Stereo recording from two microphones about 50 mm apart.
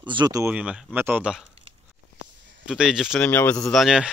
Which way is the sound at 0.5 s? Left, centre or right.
Centre.